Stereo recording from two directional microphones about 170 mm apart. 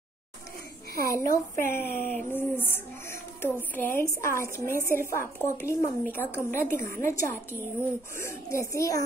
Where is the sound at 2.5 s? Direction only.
10° left (ahead or behind).